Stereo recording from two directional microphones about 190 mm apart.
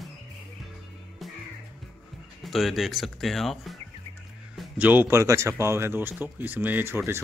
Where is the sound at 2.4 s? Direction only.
Centre (ahead or behind).